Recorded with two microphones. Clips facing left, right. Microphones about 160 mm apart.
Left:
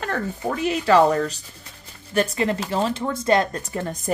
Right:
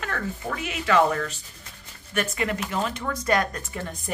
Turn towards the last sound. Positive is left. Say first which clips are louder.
# left 6 dB
turn(degrees=40)  # may be behind; listen again after turning